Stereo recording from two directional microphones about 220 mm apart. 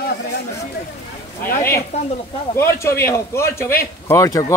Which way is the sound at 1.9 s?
30° left (ahead or behind).